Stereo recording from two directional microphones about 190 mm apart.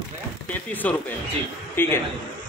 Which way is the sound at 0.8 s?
10° left (ahead or behind).